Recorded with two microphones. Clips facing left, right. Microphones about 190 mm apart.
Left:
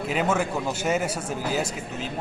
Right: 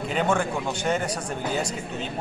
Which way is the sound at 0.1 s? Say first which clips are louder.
Even; 5° left (ahead or behind).